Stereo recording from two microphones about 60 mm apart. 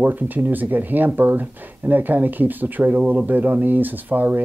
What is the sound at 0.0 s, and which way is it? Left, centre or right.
Speech, right.